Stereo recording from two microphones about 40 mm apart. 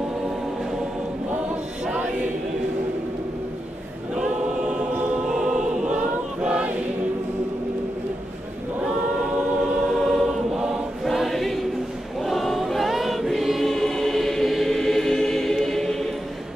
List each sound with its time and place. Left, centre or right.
4.1 s choir: centre
6.4 s choir: right
9.9 s choir: centre